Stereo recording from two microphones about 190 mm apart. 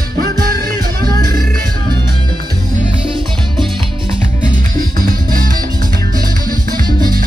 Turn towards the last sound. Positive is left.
turn(degrees=-50)  # may be behind; listen again after turning